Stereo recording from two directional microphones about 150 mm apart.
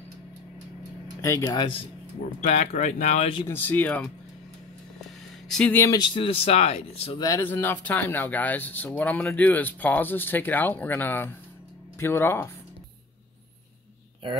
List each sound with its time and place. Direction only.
1.2 s speech: 25° left (ahead or behind)
2.4 s speech: 50° left (ahead or behind)
3.4 s speech: 15° left (ahead or behind)
5.5 s speech: 5° left (ahead or behind)
5.9 s speech: 30° left (ahead or behind)
7.2 s speech: 25° left (ahead or behind)